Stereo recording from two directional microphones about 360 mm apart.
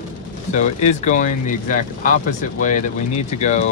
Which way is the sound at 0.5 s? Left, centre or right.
Centre.